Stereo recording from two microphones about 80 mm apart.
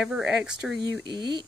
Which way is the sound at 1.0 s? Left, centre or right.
Right.